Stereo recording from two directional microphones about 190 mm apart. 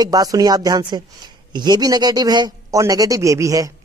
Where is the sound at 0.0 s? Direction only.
20° right (ahead or behind).